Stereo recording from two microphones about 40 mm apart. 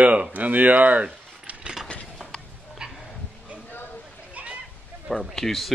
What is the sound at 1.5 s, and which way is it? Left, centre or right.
Mechanisms, right.